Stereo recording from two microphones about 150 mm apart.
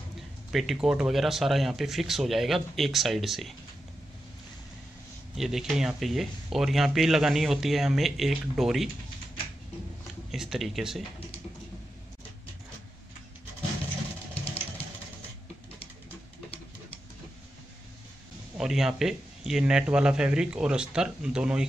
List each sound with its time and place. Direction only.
0.5 s speech: centre (ahead or behind)
5.3 s speech: centre (ahead or behind)
10.3 s speech: 5° right (ahead or behind)
14.3 s vehicle: 40° left (ahead or behind)
18.6 s speech: 5° right (ahead or behind)